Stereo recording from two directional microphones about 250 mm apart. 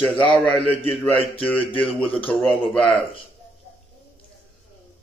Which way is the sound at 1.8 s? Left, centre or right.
Centre.